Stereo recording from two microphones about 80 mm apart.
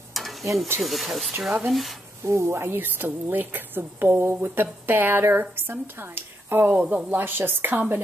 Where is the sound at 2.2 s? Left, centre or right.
Right.